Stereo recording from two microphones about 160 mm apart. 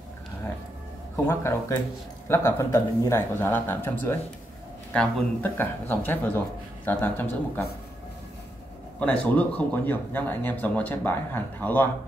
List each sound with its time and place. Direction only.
1.1 s speech: 15° left (ahead or behind)
9.0 s speech: 10° left (ahead or behind)